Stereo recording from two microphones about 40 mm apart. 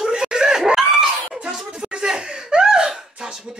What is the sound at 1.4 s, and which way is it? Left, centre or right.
Chuckle, right.